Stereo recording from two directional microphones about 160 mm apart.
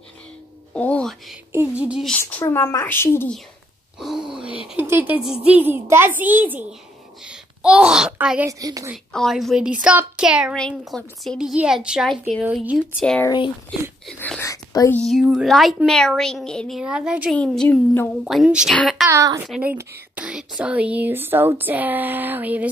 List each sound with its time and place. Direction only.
0.7 s music: 10° left (ahead or behind)
1.8 s speech: 5° right (ahead or behind)
2.4 s speech: 20° left (ahead or behind)
4.0 s groan: centre (ahead or behind)
4.6 s a woman's voice: 15° right (ahead or behind)
8.5 s a woman's voice: 20° right (ahead or behind)
8.9 s a woman's voice: centre (ahead or behind)
10.5 s a woman's voice: 5° left (ahead or behind)
14.4 s whispering: 20° left (ahead or behind)
14.9 s a woman's voice: 5° left (ahead or behind)
17.3 s speech: 5° left (ahead or behind)
18.2 s a woman's voice: 5° right (ahead or behind)
19.0 s a woman's voice: 20° right (ahead or behind)
19.4 s speech: 5° right (ahead or behind)